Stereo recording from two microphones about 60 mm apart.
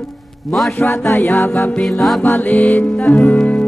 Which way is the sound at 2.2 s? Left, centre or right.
Left.